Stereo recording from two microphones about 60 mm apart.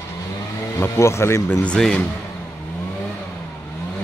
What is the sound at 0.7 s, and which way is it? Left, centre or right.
Speech, left.